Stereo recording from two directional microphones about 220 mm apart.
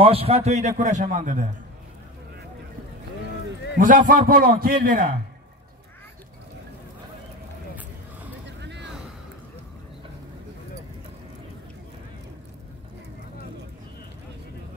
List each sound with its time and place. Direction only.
0.0 s a man's voice: 25° right (ahead or behind)
3.7 s a man's voice: 35° right (ahead or behind)
8.5 s vehicle: 50° right (ahead or behind)